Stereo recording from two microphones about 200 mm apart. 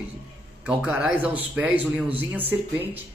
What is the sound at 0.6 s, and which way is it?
A man's voice, 5° right (ahead or behind).